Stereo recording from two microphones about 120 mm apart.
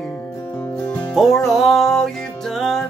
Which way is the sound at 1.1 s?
Centre (ahead or behind).